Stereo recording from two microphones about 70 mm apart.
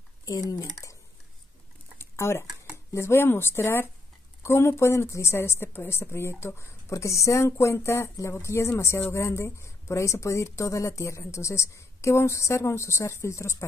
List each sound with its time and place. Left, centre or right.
0.2 s speech: left
2.0 s a sound: left
2.9 s a woman's voice: left